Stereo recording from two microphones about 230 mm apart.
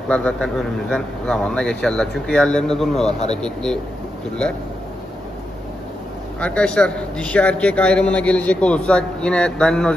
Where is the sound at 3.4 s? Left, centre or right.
Centre.